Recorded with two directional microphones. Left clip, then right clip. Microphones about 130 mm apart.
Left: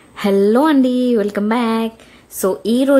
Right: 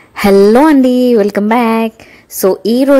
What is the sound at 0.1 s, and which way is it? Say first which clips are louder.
A woman's voice: right 7 dB; 40° right (ahead or behind).